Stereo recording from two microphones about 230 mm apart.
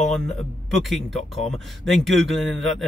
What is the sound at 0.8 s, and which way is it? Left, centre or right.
Speech, centre.